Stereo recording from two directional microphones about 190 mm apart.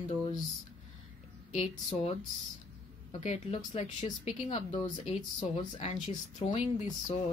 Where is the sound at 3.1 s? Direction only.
35° left (ahead or behind).